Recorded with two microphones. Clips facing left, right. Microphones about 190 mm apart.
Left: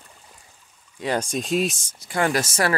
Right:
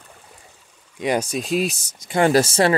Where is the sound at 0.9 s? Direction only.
15° right (ahead or behind).